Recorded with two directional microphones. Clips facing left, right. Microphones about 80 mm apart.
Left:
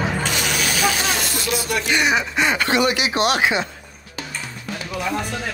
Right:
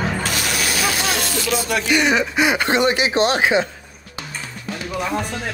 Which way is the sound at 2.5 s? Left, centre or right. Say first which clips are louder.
Right 1 dB; right.